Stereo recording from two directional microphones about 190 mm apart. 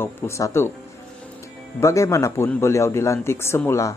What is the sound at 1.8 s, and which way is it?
Speech, 15° left (ahead or behind).